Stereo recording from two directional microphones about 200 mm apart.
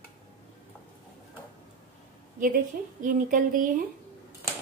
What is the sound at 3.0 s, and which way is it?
Speech, 40° right (ahead or behind).